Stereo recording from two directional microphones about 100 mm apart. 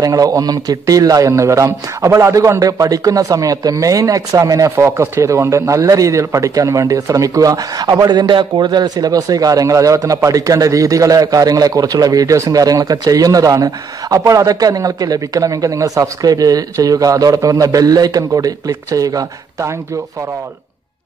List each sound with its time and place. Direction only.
0.0 s a man's voice: 35° right (ahead or behind)